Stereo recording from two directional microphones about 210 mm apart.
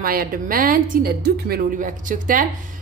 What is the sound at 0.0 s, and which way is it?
A woman's voice, 45° right (ahead or behind).